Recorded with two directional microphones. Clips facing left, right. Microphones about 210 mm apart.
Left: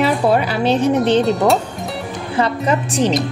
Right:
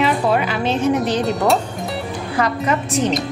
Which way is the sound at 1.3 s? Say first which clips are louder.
Left 3 dB; centre (ahead or behind).